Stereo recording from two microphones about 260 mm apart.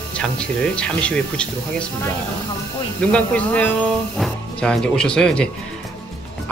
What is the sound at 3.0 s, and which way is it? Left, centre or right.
Speech, centre.